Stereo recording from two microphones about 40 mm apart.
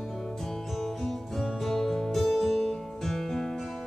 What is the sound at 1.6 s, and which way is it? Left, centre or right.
Music, centre.